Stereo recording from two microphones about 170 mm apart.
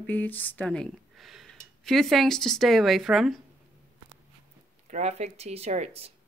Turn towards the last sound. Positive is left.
turn(degrees=-40)  # may be behind; listen again after turning